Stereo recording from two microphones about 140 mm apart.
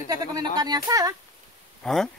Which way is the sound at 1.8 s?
5° left (ahead or behind).